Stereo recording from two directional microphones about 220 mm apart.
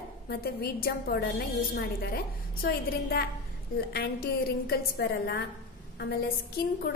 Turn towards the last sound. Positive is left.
turn(degrees=45)  # may be behind; listen again after turning